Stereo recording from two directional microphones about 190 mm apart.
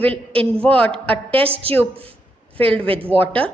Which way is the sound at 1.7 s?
30° right (ahead or behind).